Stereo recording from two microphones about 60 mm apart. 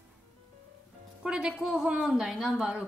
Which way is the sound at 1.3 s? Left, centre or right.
Centre.